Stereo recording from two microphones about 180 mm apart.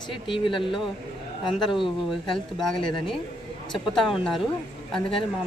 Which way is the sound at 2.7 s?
25° left (ahead or behind).